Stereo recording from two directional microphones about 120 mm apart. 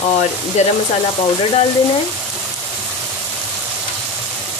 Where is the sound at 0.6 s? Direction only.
70° left (ahead or behind).